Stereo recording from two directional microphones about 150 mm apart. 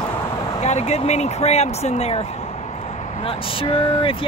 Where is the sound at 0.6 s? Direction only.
50° left (ahead or behind).